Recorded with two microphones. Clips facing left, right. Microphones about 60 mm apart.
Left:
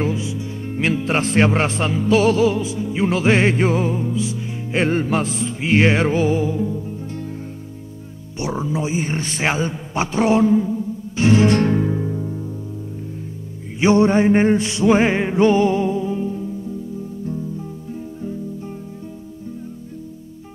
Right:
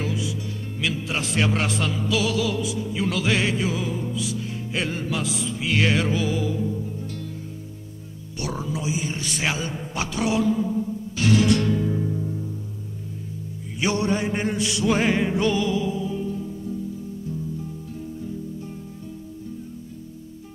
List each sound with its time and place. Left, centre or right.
0.0 s music: left
4.7 s music: left
8.4 s a man's voice: left
11.1 s music: left
11.9 s music: left
13.7 s music: left